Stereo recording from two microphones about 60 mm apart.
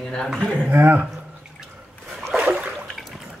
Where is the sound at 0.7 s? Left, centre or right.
Right.